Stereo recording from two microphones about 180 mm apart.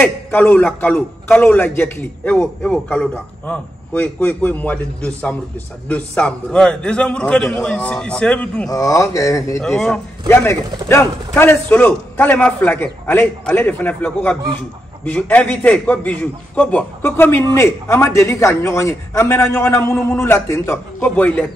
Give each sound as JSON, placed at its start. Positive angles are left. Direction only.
{"t": 0.0, "sound": "a man's voice", "side_deg": 5}
{"t": 8.6, "sound": "a man's voice", "side_deg": 20}
{"t": 9.6, "sound": "a man's voice", "side_deg": 0}
{"t": 10.2, "sound": "a man's voice", "side_deg": 15}